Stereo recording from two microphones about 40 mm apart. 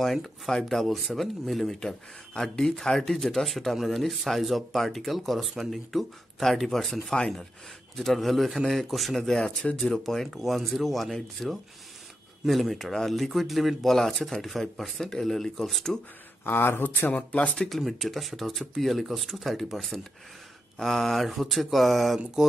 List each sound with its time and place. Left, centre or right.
0.0 s speech: centre
0.5 s speech: centre
1.8 s speech: centre
7.0 s speech: left
7.9 s speech: centre
10.2 s speech: centre
16.4 s speech: left
17.1 s speech: left
17.6 s speech: centre